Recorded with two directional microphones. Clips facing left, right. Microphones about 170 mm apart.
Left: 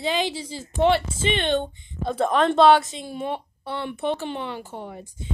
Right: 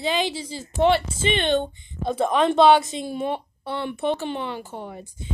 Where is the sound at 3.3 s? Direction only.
20° right (ahead or behind).